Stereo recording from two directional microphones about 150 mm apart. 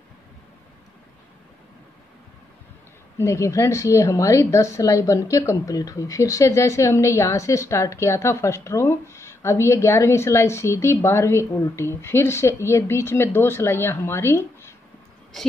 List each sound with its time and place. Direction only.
3.2 s a woman's voice: 20° left (ahead or behind)